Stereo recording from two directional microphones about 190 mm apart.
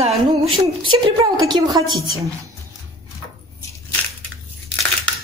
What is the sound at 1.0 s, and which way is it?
Speech, 20° right (ahead or behind).